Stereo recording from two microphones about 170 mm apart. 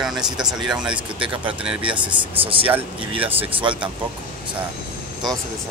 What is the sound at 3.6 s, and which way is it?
Speech, 30° right (ahead or behind).